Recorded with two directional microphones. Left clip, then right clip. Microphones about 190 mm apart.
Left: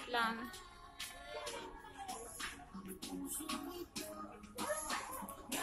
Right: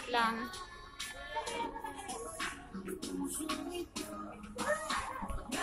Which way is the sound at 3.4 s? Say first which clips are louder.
Right 4 dB; 25° left (ahead or behind).